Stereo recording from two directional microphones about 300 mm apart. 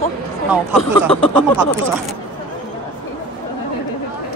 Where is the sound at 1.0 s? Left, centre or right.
Centre.